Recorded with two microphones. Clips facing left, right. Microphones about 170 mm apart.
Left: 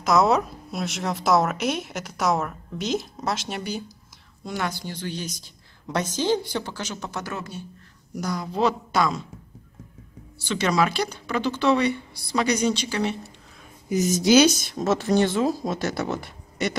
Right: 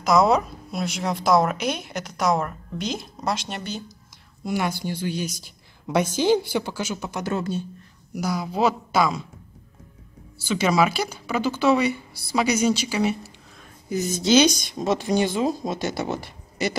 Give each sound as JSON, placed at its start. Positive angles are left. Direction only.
{"t": 0.0, "sound": "a woman's voice", "side_deg": 0}
{"t": 4.5, "sound": "speech", "side_deg": -10}
{"t": 7.2, "sound": "speech", "side_deg": -25}
{"t": 8.1, "sound": "a woman's voice", "side_deg": -5}
{"t": 10.4, "sound": "speech", "side_deg": -5}
{"t": 13.8, "sound": "a woman's voice", "side_deg": 20}